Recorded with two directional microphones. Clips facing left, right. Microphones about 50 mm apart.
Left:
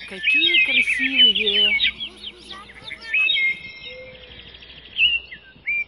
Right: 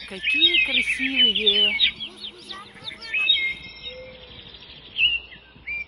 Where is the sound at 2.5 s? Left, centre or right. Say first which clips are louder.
Left 2 dB; centre.